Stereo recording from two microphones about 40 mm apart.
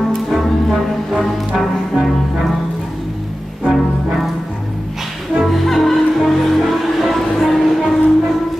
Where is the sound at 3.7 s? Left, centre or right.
Centre.